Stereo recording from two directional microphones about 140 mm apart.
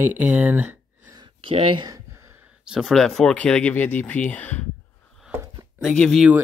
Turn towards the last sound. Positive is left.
turn(degrees=5)  # may be behind; listen again after turning